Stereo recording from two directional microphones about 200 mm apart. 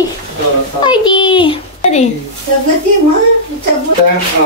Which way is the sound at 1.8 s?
35° left (ahead or behind).